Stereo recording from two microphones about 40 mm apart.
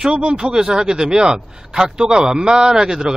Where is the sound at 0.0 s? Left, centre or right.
Right.